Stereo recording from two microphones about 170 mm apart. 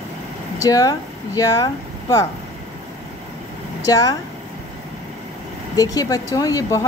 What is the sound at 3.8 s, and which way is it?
Speech, 20° left (ahead or behind).